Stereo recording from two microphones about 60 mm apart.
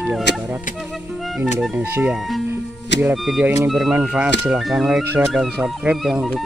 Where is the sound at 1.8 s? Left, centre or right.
Right.